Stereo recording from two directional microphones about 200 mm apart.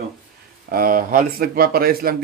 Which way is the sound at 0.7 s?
45° right (ahead or behind).